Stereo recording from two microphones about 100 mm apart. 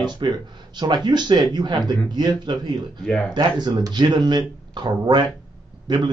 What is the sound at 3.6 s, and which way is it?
Speech, 45° right (ahead or behind).